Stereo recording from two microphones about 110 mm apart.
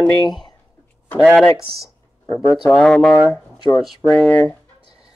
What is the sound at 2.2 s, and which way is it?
Speech, 25° left (ahead or behind).